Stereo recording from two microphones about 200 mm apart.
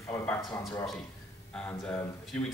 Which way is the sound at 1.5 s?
5° left (ahead or behind).